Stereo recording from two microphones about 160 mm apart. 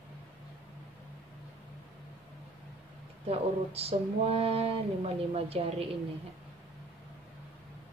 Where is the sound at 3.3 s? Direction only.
40° right (ahead or behind).